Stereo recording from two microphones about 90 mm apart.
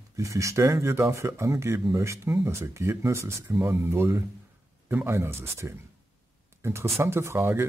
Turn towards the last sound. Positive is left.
turn(degrees=-25)  # may be behind; listen again after turning